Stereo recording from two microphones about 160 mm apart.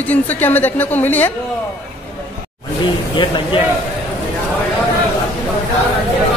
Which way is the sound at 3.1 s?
30° left (ahead or behind).